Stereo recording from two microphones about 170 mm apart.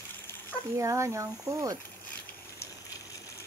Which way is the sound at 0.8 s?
20° right (ahead or behind).